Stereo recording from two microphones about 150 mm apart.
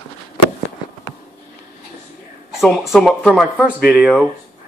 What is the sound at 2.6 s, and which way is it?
Speech, centre (ahead or behind).